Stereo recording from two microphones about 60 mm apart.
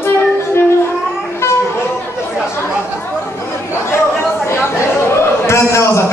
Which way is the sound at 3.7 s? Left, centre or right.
Left.